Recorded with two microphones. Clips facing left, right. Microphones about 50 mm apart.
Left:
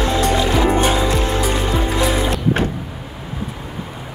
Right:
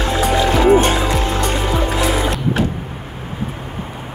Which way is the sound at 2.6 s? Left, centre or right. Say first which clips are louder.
Right 1 dB; left.